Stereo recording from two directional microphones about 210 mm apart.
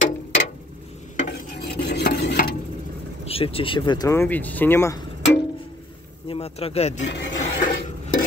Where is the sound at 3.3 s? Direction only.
25° left (ahead or behind).